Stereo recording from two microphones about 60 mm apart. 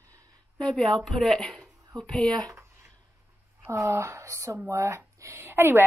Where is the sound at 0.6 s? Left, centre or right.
Centre.